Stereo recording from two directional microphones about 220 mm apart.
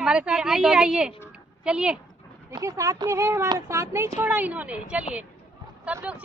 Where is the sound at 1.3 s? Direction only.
5° right (ahead or behind).